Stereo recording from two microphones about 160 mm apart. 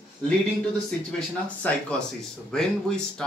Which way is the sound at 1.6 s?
10° left (ahead or behind).